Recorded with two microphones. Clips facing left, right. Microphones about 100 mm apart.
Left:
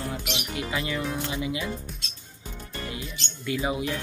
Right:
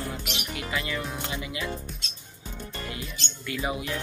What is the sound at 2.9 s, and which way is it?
Speech, 25° left (ahead or behind).